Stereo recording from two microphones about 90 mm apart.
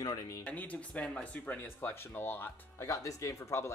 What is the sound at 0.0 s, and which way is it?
Speech, 50° left (ahead or behind).